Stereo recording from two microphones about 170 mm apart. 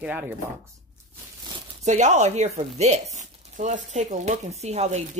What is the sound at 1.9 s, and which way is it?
Speech, 45° right (ahead or behind).